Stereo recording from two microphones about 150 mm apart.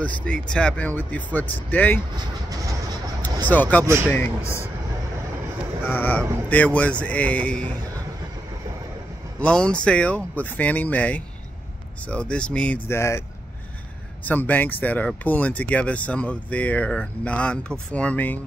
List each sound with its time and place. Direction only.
0.0 s speech: 10° left (ahead or behind)
2.1 s train: 25° right (ahead or behind)
3.4 s speech: 10° left (ahead or behind)
3.8 s speech: 20° right (ahead or behind)
5.9 s speech: 10° left (ahead or behind)
9.4 s speech: 5° left (ahead or behind)
14.2 s speech: 10° left (ahead or behind)